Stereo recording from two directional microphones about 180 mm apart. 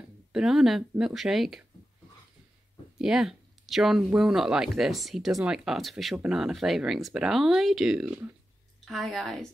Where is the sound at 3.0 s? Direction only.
5° right (ahead or behind).